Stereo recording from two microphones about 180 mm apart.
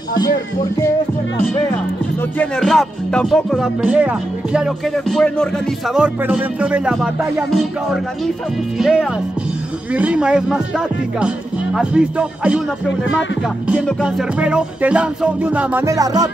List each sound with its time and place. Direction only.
1.4 s speech: 10° left (ahead or behind)
2.3 s music: centre (ahead or behind)
5.9 s music: 10° right (ahead or behind)
13.8 s music: centre (ahead or behind); by 16.3 s 20° right (ahead or behind)